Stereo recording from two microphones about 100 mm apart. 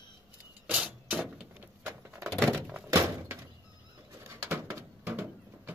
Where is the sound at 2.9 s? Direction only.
25° right (ahead or behind).